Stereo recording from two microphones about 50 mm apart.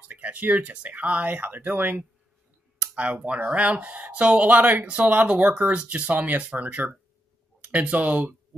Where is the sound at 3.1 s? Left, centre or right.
Right.